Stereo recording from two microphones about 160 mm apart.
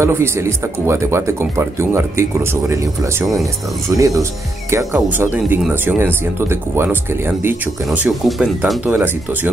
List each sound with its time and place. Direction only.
0.0 s speech: 15° right (ahead or behind)